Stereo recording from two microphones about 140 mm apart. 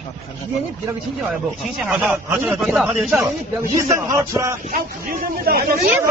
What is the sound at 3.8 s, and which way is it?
Speech, 20° right (ahead or behind).